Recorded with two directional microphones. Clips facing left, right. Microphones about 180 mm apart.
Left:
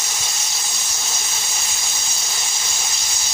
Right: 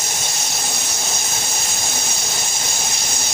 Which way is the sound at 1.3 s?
50° right (ahead or behind).